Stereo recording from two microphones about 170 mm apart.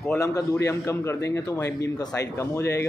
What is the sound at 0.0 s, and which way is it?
A man's voice, 10° left (ahead or behind).